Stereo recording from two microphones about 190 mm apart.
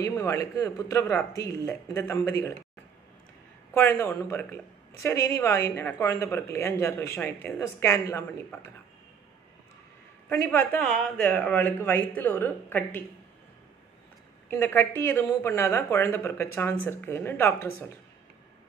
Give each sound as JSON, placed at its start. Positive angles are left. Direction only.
{"t": 0.0, "sound": "speech", "side_deg": 15}
{"t": 3.7, "sound": "speech", "side_deg": 10}
{"t": 10.3, "sound": "speech", "side_deg": 15}
{"t": 14.5, "sound": "speech", "side_deg": 10}